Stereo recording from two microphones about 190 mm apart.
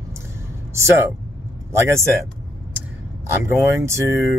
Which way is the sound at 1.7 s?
15° right (ahead or behind).